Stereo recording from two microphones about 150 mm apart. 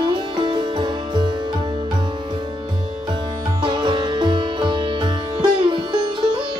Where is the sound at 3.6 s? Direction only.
30° right (ahead or behind).